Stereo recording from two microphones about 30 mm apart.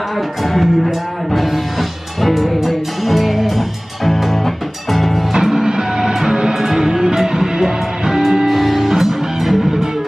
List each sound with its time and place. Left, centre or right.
0.4 s music: centre
5.3 s music: centre
8.5 s music: centre